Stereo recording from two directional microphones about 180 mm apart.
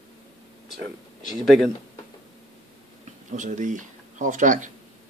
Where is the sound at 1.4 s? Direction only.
Centre (ahead or behind).